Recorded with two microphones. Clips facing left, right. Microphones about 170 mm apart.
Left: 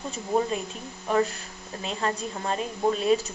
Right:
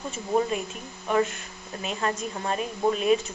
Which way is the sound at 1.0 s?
35° left (ahead or behind).